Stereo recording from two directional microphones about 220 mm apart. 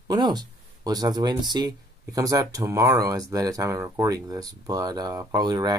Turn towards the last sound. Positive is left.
turn(degrees=-15)  # may be behind; listen again after turning